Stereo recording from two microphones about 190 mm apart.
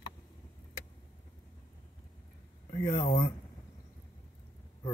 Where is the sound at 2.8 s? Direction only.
20° left (ahead or behind).